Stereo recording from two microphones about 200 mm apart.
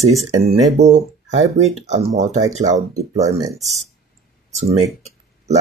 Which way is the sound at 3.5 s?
Centre (ahead or behind).